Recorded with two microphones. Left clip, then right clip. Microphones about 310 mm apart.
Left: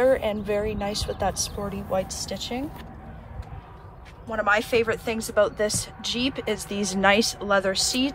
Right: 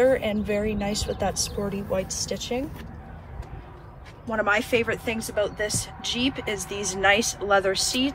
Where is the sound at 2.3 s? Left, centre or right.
Left.